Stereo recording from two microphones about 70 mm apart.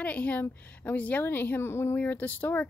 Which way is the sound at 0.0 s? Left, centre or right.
Left.